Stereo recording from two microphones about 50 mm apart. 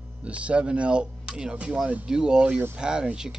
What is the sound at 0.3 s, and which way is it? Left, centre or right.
Speech, right.